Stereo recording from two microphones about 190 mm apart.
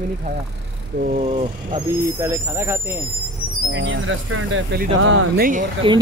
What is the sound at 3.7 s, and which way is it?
Speech, 80° right.